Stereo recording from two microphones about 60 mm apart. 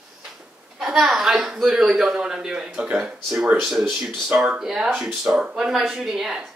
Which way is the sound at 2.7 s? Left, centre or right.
Right.